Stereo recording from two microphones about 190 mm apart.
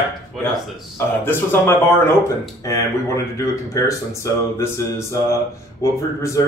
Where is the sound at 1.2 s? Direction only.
10° left (ahead or behind).